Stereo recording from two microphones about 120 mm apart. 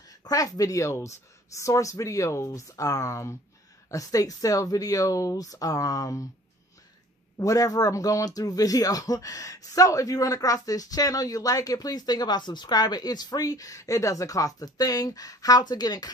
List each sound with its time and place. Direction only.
0.1 s speech: 30° left (ahead or behind)
7.3 s speech: 30° left (ahead or behind)